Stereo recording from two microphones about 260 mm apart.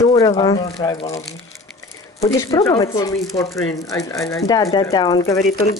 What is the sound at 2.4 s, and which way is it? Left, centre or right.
Speech, centre.